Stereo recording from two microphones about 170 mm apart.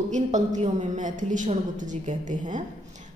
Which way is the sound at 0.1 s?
45° right (ahead or behind).